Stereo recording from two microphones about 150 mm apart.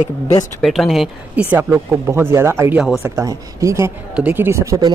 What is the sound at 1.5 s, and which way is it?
Speech, 20° right (ahead or behind).